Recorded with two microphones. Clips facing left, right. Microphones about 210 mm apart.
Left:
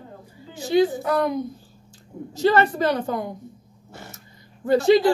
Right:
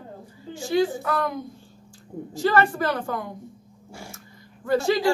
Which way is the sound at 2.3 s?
20° left (ahead or behind).